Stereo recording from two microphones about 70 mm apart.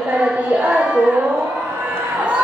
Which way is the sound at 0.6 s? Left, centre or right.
Centre.